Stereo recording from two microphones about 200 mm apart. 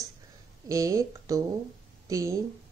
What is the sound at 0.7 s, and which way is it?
A woman's voice, 15° right (ahead or behind).